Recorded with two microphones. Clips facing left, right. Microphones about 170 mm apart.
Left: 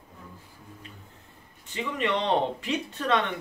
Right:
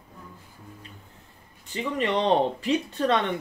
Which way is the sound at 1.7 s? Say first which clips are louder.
Right 2 dB; 35° right (ahead or behind).